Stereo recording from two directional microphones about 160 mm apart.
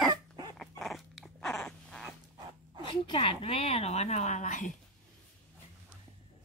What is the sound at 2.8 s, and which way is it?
A woman's voice, 30° left (ahead or behind).